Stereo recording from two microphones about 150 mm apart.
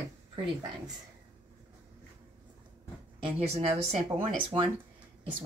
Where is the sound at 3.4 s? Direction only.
45° right (ahead or behind).